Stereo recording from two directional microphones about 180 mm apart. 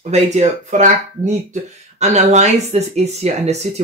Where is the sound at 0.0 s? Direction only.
40° right (ahead or behind).